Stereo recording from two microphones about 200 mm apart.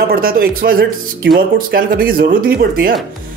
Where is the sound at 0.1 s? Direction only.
45° right (ahead or behind).